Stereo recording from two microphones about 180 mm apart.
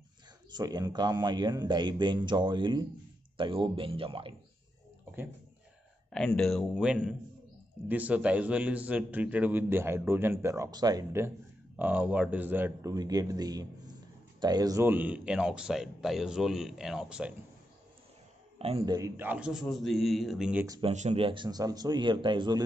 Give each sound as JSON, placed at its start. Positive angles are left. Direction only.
{"t": 0.5, "sound": "a man's voice", "side_deg": -25}
{"t": 6.1, "sound": "a man's voice", "side_deg": 5}
{"t": 12.9, "sound": "a man's voice", "side_deg": -20}
{"t": 18.6, "sound": "a man's voice", "side_deg": -30}
{"t": 18.9, "sound": "speech", "side_deg": -15}
{"t": 20.6, "sound": "a man's voice", "side_deg": -20}
{"t": 20.9, "sound": "a man's voice", "side_deg": -40}